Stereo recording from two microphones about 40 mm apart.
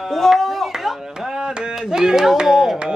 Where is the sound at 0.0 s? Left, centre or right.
Centre.